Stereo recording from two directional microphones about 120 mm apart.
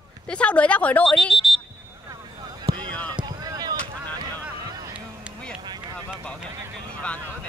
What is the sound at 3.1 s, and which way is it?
Rowboat, 35° right (ahead or behind).